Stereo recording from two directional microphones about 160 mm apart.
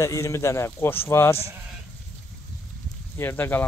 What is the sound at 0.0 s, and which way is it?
A man's voice, 20° left (ahead or behind).